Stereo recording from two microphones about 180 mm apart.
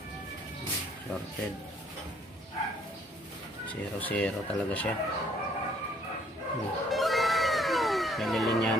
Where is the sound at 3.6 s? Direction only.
10° left (ahead or behind).